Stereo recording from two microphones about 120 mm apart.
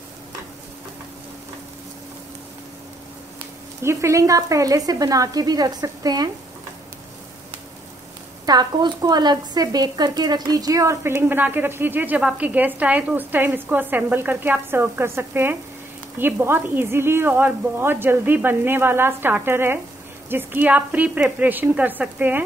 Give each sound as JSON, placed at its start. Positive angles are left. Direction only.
{"t": 3.8, "sound": "speech", "side_deg": -25}
{"t": 8.5, "sound": "speech", "side_deg": -35}